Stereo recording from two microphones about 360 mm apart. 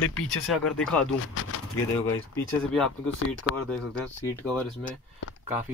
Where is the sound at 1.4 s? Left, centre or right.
Left.